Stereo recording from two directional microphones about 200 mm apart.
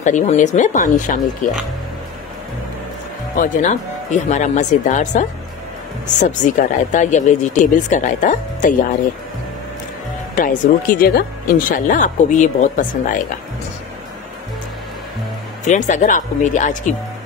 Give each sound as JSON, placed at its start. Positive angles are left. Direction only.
{"t": 0.0, "sound": "speech", "side_deg": 40}
{"t": 3.3, "sound": "speech", "side_deg": 40}
{"t": 6.2, "sound": "speech", "side_deg": 40}
{"t": 10.3, "sound": "speech", "side_deg": 45}
{"t": 15.6, "sound": "speech", "side_deg": 40}